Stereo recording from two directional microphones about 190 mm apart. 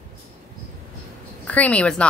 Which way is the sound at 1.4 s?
5° left (ahead or behind).